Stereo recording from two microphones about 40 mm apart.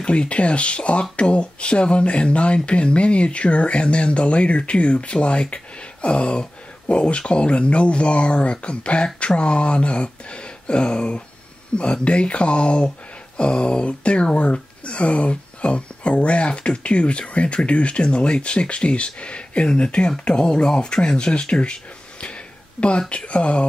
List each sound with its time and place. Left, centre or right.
0.0 s speech: left